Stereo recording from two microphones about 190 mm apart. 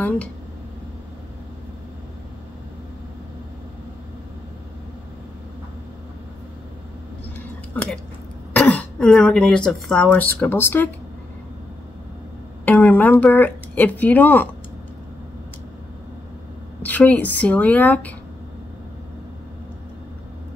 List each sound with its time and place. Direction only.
7.7 s speech: 5° left (ahead or behind)
12.6 s speech: 10° left (ahead or behind)
16.8 s speech: 10° left (ahead or behind)